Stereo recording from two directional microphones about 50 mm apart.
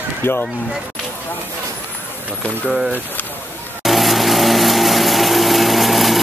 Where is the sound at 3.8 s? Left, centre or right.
Centre.